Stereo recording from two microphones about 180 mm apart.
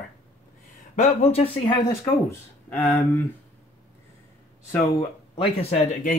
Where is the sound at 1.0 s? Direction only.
35° left (ahead or behind).